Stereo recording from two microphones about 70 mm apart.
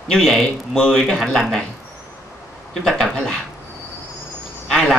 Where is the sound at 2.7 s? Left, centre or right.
Centre.